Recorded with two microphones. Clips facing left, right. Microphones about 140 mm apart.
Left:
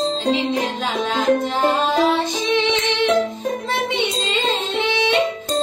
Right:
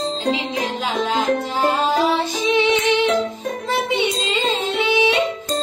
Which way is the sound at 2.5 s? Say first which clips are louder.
Right 4 dB; 10° right (ahead or behind).